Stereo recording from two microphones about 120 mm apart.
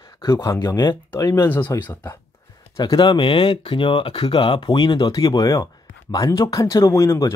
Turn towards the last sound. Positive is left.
turn(degrees=25)  # may be behind; listen again after turning